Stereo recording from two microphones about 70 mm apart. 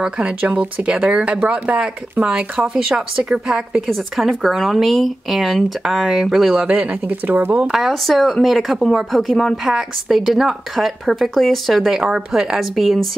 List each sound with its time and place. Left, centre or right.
0.0 s speech: centre
3.9 s speech: centre; by 7.5 s right
7.5 s speech: centre